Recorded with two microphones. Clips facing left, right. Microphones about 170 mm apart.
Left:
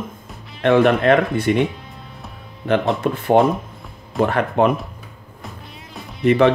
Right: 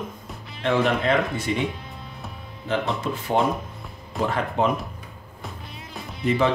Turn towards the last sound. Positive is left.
turn(degrees=65)  # may be behind; listen again after turning